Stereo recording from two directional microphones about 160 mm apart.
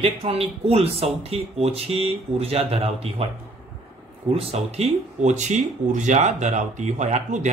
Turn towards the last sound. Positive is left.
turn(degrees=-45)  # may be behind; listen again after turning